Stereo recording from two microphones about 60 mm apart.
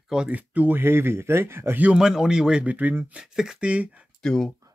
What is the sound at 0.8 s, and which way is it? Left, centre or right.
Speech, right.